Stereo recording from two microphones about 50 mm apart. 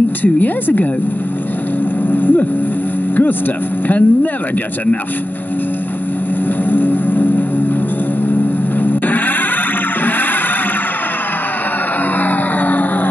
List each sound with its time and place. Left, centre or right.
0.2 s speech: left
2.0 s vehicle: left
3.8 s speech: left
6.7 s music: left
8.8 s music: left
12.2 s music: left